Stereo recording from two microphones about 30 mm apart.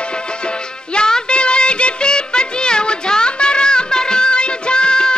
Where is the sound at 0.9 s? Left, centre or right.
Left.